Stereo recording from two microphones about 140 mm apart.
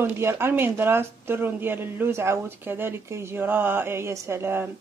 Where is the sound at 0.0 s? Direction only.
15° right (ahead or behind).